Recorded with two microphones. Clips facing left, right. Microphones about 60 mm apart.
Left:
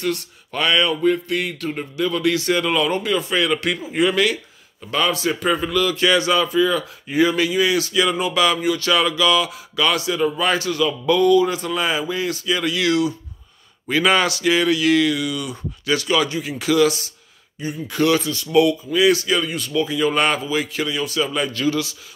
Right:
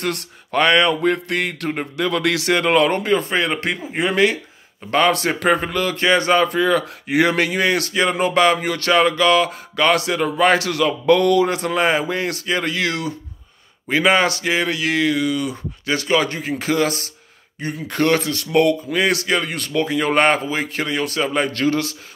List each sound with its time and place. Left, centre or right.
0.0 s speech: right
4.9 s speech: right
5.7 s speech: right
13.8 s speech: right
17.6 s speech: right